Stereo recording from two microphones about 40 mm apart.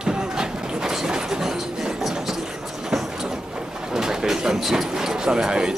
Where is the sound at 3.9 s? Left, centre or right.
Centre.